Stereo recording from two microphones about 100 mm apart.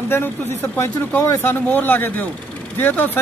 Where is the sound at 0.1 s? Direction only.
25° left (ahead or behind).